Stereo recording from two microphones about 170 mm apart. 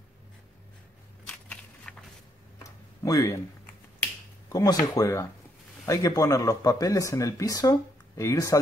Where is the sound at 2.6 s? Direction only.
20° left (ahead or behind).